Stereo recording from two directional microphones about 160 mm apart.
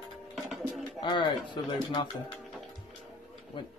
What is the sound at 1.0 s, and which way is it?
Speech, 30° left (ahead or behind).